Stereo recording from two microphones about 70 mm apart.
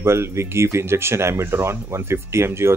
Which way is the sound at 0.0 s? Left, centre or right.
Right.